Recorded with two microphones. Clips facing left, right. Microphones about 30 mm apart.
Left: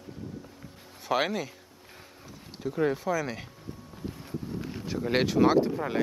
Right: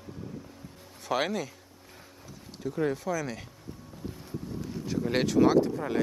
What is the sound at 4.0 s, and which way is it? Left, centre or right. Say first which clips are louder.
Wind: left 2 dB; left.